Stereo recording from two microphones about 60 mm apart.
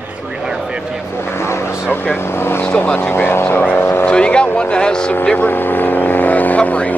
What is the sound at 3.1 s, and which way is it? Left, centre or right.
Speech, left.